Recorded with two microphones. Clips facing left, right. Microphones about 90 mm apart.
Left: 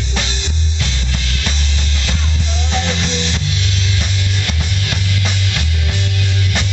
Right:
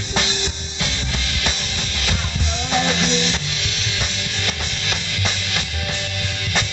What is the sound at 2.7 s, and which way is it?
Music, 10° right (ahead or behind).